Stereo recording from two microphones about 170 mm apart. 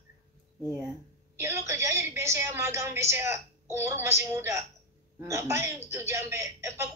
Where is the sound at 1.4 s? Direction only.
15° right (ahead or behind).